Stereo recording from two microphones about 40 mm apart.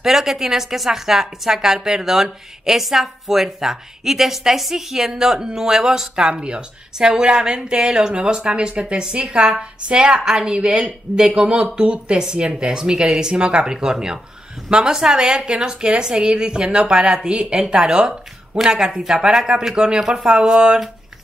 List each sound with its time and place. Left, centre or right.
0.0 s a woman's voice: centre